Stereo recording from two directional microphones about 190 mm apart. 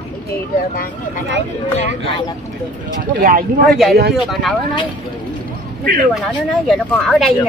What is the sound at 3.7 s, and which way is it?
Speech, centre (ahead or behind).